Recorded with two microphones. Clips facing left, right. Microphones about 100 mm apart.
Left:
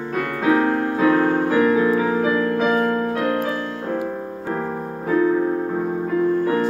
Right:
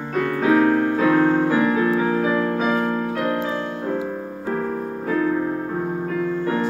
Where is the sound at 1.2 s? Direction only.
10° left (ahead or behind).